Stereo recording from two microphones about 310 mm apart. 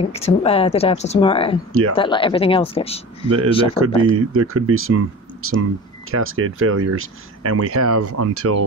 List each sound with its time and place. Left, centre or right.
0.1 s speech: centre
1.7 s speech: right
2.0 s speech: centre
3.8 s speech: right